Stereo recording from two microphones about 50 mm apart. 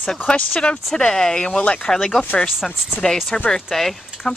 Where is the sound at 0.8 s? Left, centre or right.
Centre.